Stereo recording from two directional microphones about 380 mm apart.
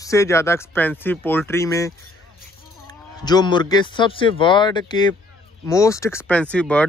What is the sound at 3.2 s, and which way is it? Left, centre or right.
Speech, centre.